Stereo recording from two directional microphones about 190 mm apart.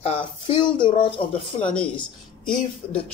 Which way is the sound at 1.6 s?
5° left (ahead or behind).